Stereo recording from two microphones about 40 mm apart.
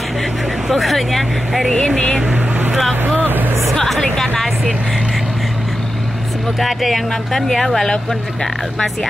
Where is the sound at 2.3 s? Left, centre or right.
Right.